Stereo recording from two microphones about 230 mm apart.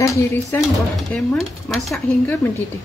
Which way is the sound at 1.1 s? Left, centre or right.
Centre.